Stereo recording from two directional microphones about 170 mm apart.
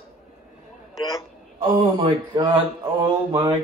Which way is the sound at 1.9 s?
25° right (ahead or behind).